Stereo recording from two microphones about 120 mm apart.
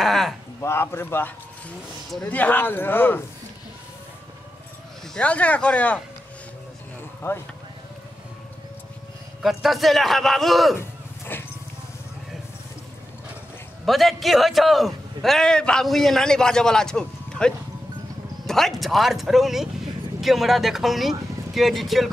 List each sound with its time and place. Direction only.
0.0 s a sound: centre (ahead or behind)
0.6 s speech: 20° left (ahead or behind)
5.1 s speech: 10° left (ahead or behind)
7.2 s speech: 20° left (ahead or behind)
9.4 s a man's voice: centre (ahead or behind)
10.8 s a sound: 20° left (ahead or behind)
13.8 s a man's voice: centre (ahead or behind)